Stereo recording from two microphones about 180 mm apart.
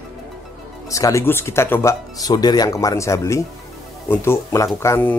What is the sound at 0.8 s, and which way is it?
Speech, 20° left (ahead or behind).